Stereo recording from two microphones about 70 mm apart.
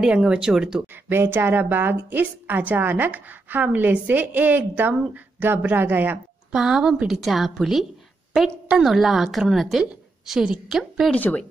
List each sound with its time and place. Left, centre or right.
0.0 s speech: centre
1.0 s a woman's voice: right
6.5 s a woman's voice: centre
11.1 s speech: left